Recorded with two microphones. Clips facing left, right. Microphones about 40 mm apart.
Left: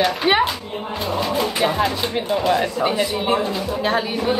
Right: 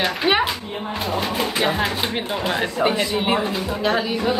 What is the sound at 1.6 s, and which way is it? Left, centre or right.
Speech, right.